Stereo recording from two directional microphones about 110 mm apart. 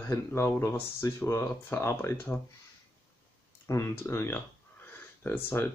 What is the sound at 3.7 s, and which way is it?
Speech, 25° left (ahead or behind).